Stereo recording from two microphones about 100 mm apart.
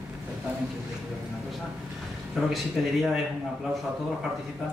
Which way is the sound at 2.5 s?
Centre (ahead or behind).